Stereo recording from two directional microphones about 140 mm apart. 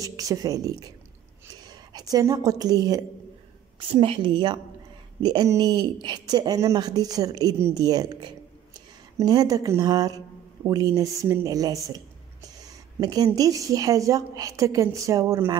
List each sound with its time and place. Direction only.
0.0 s speech: 25° right (ahead or behind)
3.9 s a woman's voice: 40° right (ahead or behind)
13.0 s speech: 25° right (ahead or behind)